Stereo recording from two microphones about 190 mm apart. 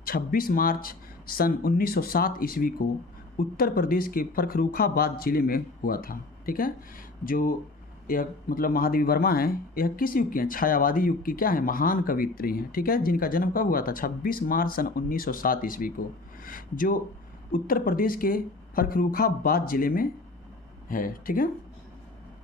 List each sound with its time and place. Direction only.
0.0 s speech: 50° left (ahead or behind)